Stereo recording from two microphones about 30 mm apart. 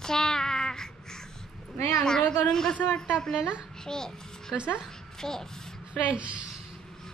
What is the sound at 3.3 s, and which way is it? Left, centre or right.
Speech, right.